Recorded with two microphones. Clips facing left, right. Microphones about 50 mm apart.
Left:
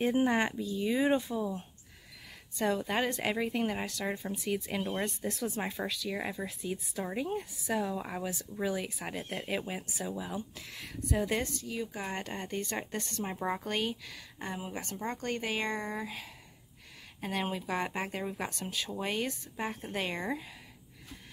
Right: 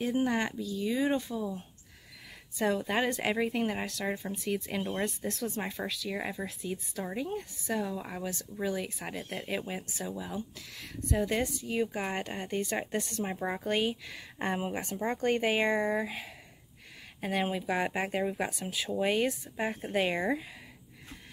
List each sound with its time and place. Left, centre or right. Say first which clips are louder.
0.0 s speech: left 2 dB; left
2.5 s a woman's voice: right 1 dB; centre
11.6 s speech: right 6 dB; right
12.1 s speech: right 3 dB; centre
14.4 s speech: right 6 dB; right; by 20.4 s centre